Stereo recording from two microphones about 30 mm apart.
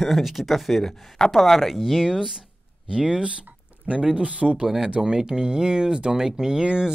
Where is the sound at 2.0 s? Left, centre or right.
Right.